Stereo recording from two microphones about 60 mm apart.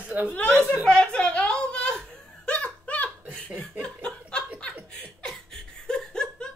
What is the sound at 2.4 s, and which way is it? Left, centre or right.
Laughter, left.